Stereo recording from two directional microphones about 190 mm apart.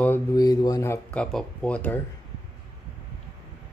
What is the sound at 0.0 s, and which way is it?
Speech, 15° left (ahead or behind).